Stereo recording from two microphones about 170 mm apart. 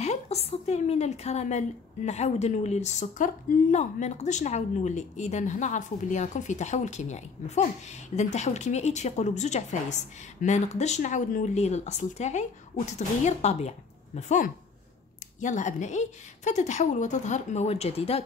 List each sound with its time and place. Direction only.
0.0 s a woman's voice: 40° left (ahead or behind)